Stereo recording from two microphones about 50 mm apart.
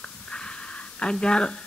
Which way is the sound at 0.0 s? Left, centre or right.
Centre.